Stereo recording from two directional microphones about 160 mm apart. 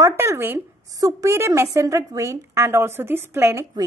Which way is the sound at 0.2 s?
15° right (ahead or behind).